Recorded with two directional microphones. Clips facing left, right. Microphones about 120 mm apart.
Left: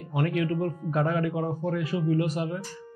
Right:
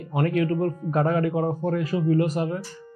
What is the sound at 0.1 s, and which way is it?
Speech, 40° right (ahead or behind).